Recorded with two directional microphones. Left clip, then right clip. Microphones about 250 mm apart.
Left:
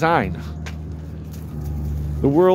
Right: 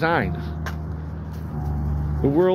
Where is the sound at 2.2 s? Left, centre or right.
Centre.